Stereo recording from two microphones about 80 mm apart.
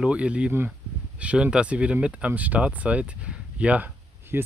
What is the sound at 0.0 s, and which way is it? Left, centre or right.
Speech, centre.